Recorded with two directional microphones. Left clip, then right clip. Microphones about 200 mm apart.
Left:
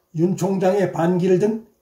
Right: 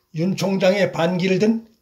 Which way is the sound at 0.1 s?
30° right (ahead or behind).